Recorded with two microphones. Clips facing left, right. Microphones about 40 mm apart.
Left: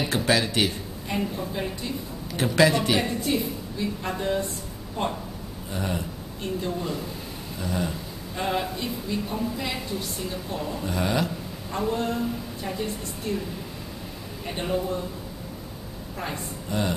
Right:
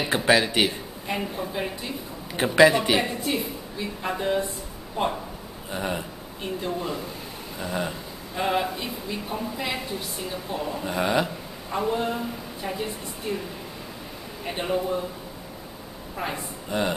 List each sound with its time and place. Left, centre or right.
0.0 s a woman's voice: centre
14.4 s a woman's voice: centre
16.2 s a woman's voice: centre